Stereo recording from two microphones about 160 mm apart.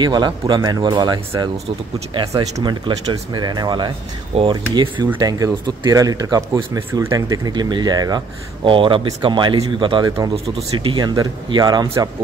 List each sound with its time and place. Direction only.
0.0 s speech: 25° right (ahead or behind)